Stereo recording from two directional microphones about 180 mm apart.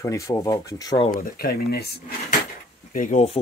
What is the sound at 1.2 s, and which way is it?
Speech, 55° left (ahead or behind).